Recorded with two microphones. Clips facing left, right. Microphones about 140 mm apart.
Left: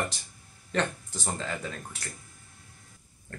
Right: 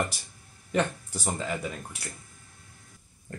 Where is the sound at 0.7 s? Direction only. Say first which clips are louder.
Right 2 dB; 10° right (ahead or behind).